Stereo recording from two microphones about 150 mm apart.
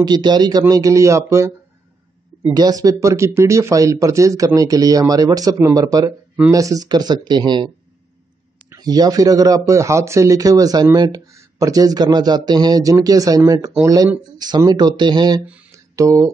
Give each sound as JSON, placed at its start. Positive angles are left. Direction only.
{"t": 0.0, "sound": "speech", "side_deg": -30}
{"t": 2.5, "sound": "speech", "side_deg": -25}
{"t": 15.7, "sound": "a sound", "side_deg": -20}